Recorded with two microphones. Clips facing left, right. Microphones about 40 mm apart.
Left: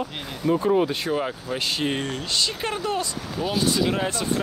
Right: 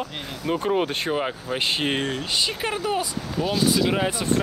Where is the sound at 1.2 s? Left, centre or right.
Right.